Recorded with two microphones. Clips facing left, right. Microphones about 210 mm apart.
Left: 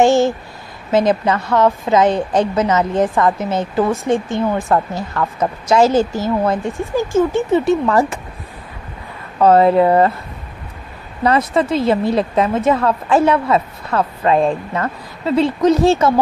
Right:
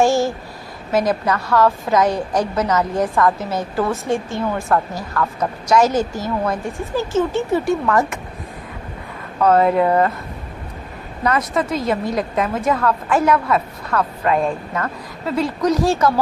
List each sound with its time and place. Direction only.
0.0 s a woman's voice: 20° left (ahead or behind)
6.8 s a woman's voice: 15° left (ahead or behind); by 8.2 s 30° left (ahead or behind)
9.4 s a woman's voice: 30° left (ahead or behind)
11.2 s a woman's voice: 30° left (ahead or behind)